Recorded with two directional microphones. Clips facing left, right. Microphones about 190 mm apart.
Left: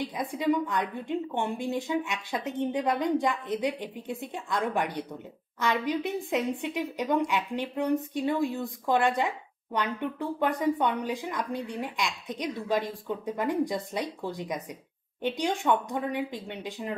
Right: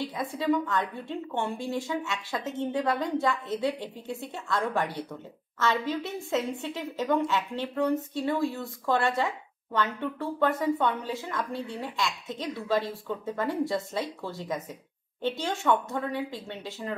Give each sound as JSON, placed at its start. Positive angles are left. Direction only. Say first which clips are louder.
{"t": 0.0, "sound": "speech", "louder": "left 1 dB", "side_deg": 15}